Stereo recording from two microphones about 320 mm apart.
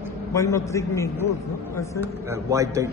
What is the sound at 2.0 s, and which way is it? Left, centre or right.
Speech, centre.